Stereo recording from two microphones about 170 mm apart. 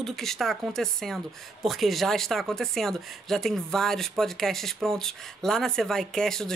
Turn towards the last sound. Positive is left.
turn(degrees=5)  # may be behind; listen again after turning